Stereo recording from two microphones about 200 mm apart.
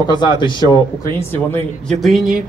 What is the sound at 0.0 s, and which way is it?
Speech, 20° left (ahead or behind).